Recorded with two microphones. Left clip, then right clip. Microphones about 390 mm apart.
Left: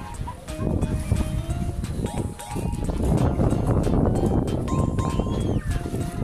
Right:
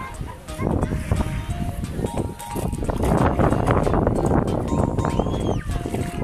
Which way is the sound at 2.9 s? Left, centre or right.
Right.